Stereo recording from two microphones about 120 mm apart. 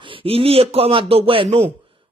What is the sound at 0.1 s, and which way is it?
A man's voice, 50° right (ahead or behind).